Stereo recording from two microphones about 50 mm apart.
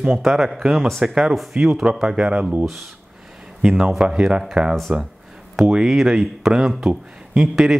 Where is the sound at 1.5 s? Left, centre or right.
Right.